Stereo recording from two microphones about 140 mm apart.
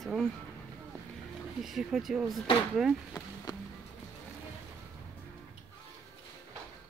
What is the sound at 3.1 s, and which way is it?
Speech, 30° left (ahead or behind).